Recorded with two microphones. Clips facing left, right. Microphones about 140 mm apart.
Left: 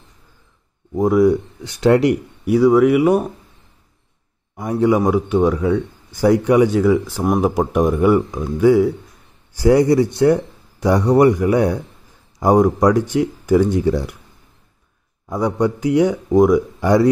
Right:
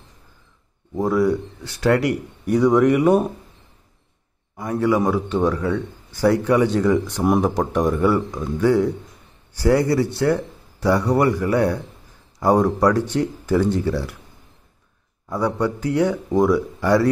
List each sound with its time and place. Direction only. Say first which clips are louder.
0.9 s a man's voice: left 5 dB; 15° left (ahead or behind)
2.4 s speech: left 3 dB; 5° left (ahead or behind)
4.6 s a man's voice: left 3 dB; 20° left (ahead or behind)
15.2 s a man's voice: left 3 dB; 15° left (ahead or behind)